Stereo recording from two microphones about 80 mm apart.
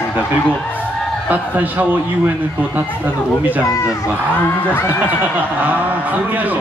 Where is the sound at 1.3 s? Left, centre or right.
Right.